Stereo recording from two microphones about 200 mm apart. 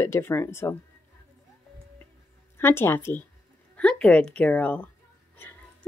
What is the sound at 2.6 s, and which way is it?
A woman's voice, 10° left (ahead or behind).